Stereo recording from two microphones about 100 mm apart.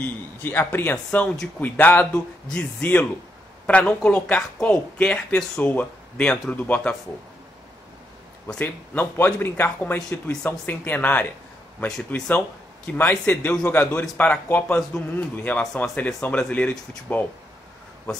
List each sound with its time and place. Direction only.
0.0 s speech: 20° left (ahead or behind)
0.9 s speech: 5° left (ahead or behind)
1.6 s speech: 20° left (ahead or behind)
8.5 s speech: 20° left (ahead or behind)